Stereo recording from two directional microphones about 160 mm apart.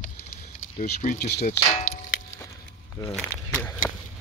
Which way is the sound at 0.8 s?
55° left (ahead or behind).